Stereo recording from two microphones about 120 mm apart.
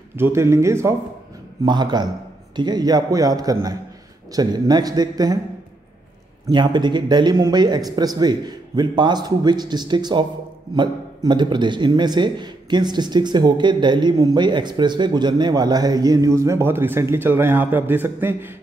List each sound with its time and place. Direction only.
0.1 s speech: 20° right (ahead or behind)
1.6 s speech: 35° right (ahead or behind)
6.4 s speech: 40° right (ahead or behind); by 18.5 s 20° right (ahead or behind)